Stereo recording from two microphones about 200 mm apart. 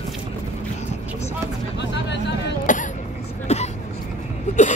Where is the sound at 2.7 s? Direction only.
40° left (ahead or behind).